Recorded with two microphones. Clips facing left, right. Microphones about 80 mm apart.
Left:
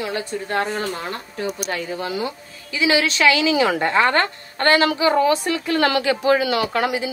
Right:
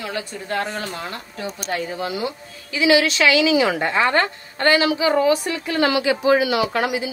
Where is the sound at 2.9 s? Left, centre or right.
Left.